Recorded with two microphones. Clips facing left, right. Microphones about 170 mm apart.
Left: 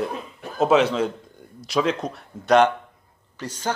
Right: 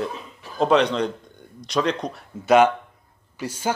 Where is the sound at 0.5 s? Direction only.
5° left (ahead or behind).